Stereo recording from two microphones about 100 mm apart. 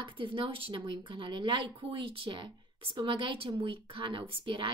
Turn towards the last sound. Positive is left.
turn(degrees=-55)  # may be behind; listen again after turning